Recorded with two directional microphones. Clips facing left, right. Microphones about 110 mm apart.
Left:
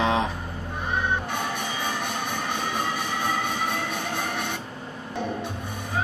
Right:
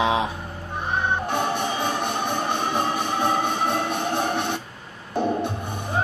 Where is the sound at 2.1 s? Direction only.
30° right (ahead or behind).